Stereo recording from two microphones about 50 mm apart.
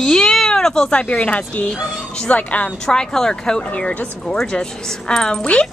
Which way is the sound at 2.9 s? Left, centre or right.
Centre.